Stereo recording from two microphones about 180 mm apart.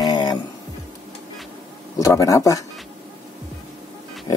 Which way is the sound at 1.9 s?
20° left (ahead or behind).